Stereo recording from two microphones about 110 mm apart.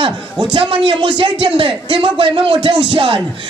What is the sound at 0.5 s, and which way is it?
A man's voice, 50° right (ahead or behind).